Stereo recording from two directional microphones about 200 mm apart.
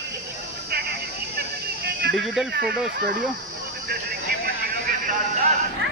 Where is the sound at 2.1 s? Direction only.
Centre (ahead or behind).